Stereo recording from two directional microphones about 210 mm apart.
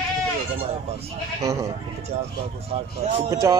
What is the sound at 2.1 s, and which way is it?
Speech, 35° right (ahead or behind).